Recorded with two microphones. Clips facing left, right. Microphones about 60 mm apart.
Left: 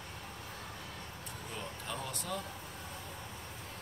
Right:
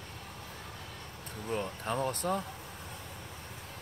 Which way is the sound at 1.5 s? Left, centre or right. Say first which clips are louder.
Right 9 dB; right.